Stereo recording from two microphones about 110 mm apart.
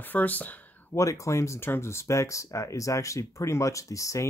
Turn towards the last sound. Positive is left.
turn(degrees=30)  # may be behind; listen again after turning